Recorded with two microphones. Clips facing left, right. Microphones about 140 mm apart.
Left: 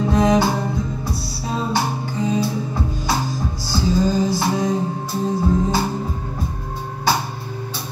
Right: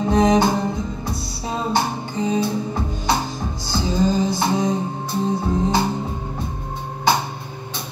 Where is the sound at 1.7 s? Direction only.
20° right (ahead or behind).